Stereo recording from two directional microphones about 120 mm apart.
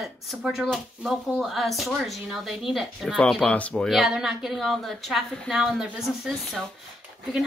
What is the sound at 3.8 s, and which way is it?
Speech, 5° right (ahead or behind).